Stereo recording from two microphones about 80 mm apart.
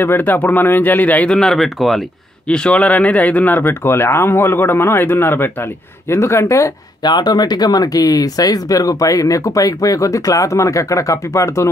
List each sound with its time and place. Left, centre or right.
0.0 s speech: left
1.3 s speech: centre
2.4 s speech: centre; by 6.7 s left
7.0 s speech: left